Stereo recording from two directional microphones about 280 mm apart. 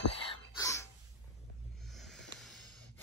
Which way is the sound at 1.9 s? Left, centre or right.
Centre.